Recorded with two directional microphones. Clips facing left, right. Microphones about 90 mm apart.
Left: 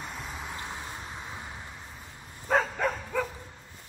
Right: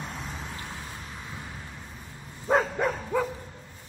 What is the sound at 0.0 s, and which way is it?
Vehicle, centre (ahead or behind).